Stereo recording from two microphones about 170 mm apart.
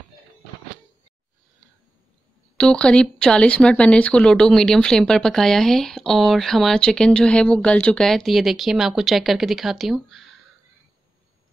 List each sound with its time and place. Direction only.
2.5 s speech: 5° left (ahead or behind)